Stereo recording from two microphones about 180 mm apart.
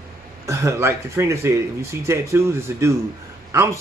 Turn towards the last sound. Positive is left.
turn(degrees=-15)  # may be behind; listen again after turning